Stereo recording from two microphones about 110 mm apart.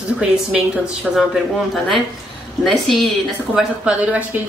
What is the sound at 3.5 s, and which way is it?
Speech, 10° right (ahead or behind).